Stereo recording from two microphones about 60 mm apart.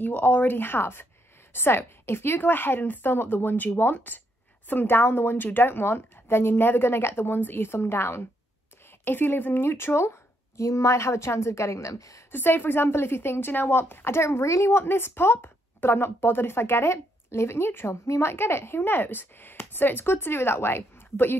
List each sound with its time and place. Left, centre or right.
0.0 s a woman's voice: left
10.6 s a woman's voice: left
11.9 s a woman's voice: left
12.3 s a woman's voice: left
18.0 s a woman's voice: left
18.3 s a woman's voice: left